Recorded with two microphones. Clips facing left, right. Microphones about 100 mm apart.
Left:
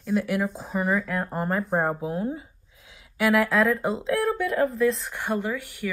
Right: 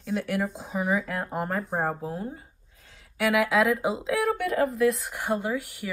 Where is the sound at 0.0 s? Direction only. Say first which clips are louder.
Left 3 dB; centre (ahead or behind).